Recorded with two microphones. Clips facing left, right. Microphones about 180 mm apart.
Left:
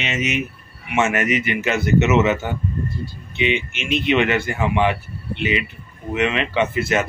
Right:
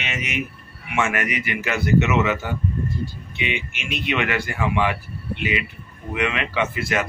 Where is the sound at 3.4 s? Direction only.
25° left (ahead or behind).